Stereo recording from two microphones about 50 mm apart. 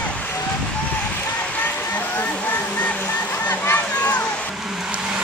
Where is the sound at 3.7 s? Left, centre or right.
Left.